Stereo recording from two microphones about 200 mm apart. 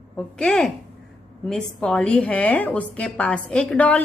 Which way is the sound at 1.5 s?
5° left (ahead or behind).